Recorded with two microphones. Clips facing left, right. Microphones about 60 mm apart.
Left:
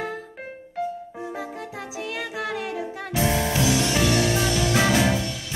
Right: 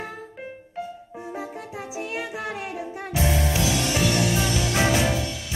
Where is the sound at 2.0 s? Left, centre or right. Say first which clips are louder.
Left 1 dB; left.